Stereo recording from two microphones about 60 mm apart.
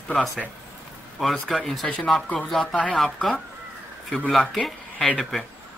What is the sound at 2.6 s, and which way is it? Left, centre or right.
Speech, centre.